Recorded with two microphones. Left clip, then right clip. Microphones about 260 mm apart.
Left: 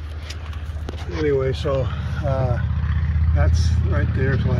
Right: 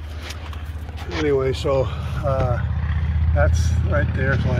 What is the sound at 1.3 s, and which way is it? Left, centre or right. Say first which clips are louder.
Speech: right 2 dB; centre.